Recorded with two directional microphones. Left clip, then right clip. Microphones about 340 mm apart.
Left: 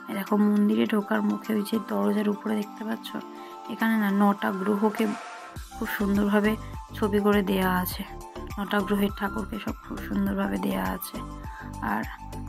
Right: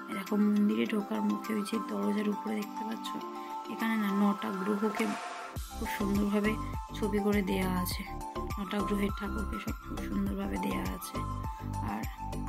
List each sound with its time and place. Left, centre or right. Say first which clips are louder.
0.1 s speech: left 7 dB; centre
11.8 s music: left 10 dB; centre